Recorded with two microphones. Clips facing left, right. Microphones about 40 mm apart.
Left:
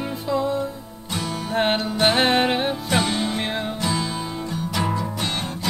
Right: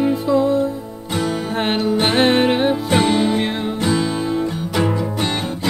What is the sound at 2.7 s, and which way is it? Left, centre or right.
Music, centre.